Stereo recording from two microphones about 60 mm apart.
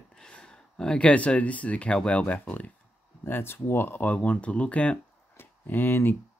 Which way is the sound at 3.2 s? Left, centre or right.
Left.